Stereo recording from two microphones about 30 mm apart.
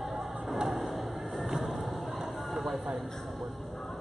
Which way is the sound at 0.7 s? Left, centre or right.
Centre.